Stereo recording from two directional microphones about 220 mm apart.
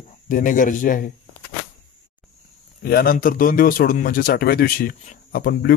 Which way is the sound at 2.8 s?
45° left (ahead or behind).